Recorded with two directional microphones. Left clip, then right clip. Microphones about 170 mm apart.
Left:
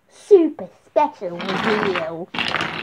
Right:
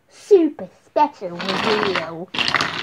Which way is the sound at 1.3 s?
10° left (ahead or behind).